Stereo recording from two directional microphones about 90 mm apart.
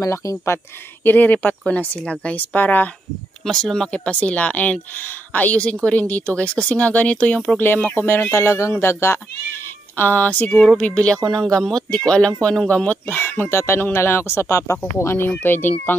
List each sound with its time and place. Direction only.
0.0 s speech: 40° left (ahead or behind)
1.0 s speech: 20° left (ahead or behind)
3.4 s speech: 5° left (ahead or behind)
7.6 s speech: 25° left (ahead or behind)
9.9 s speech: 20° left (ahead or behind)